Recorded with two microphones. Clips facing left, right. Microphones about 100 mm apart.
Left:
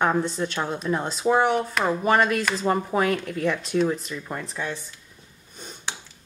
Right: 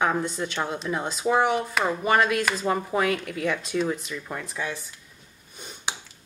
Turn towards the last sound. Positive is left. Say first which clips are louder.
# right 1 dB
turn(degrees=-10)  # may be behind; listen again after turning